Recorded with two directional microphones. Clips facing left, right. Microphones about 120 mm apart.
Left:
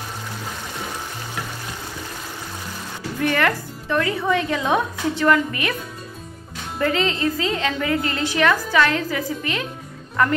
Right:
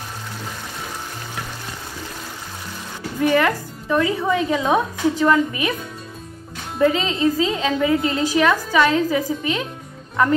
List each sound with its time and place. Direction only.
3.2 s a woman's voice: 15° right (ahead or behind)
6.8 s a woman's voice: 15° right (ahead or behind)